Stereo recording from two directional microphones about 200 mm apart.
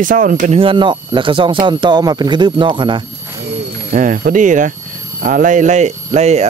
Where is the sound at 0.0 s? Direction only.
40° right (ahead or behind).